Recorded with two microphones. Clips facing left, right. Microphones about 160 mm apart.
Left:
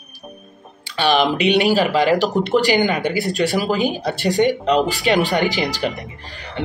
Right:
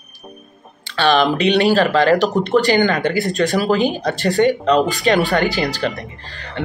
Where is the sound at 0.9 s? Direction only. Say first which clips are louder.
Right 2 dB; 15° left (ahead or behind).